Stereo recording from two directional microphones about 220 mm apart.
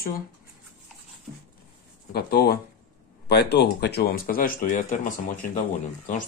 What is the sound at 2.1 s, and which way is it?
Speech, 45° left (ahead or behind).